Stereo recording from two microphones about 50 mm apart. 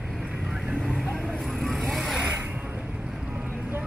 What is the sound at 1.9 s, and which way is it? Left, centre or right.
Vehicle, centre.